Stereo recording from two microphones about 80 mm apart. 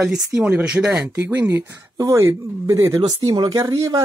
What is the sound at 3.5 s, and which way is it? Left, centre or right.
Speech, right.